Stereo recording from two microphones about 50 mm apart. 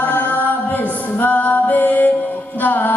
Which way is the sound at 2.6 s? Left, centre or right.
Left.